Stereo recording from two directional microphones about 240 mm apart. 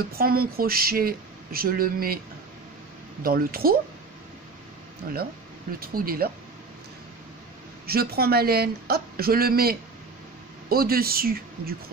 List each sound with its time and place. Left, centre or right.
0.1 s speech: right
3.2 s speech: right
5.1 s speech: right
7.8 s speech: right